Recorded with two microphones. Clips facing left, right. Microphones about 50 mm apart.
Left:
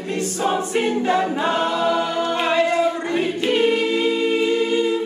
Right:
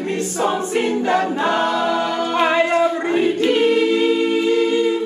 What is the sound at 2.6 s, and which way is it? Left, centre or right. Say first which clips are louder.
Music: right 2 dB; right.